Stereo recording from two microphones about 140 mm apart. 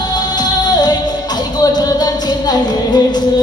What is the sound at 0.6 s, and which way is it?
Music, 30° left (ahead or behind).